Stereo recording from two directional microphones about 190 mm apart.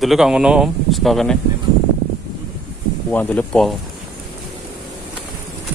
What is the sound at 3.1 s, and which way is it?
Speech, 10° left (ahead or behind).